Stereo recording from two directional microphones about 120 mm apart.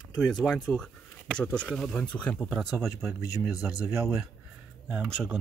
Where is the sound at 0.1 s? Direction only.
5° left (ahead or behind).